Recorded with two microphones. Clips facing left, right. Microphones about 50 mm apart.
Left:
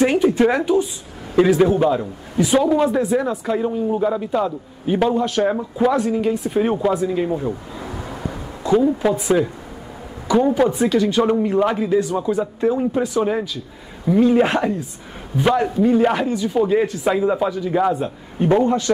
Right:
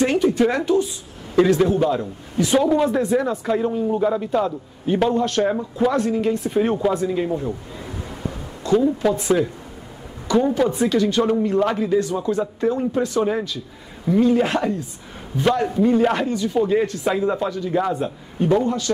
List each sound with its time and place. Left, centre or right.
0.0 s speech: centre
8.6 s speech: centre
14.3 s a woman's voice: left
15.3 s speech: centre
18.5 s a woman's voice: left